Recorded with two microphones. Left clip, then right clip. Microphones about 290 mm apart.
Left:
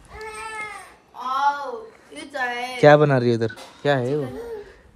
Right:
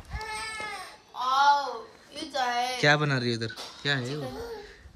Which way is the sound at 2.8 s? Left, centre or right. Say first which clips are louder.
Left 12 dB; centre.